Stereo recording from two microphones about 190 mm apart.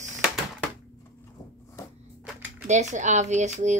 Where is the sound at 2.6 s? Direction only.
40° right (ahead or behind).